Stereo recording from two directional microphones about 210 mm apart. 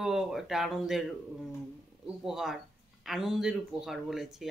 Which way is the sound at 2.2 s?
Centre (ahead or behind).